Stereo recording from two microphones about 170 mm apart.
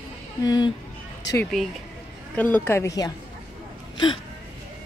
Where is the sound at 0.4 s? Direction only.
25° left (ahead or behind).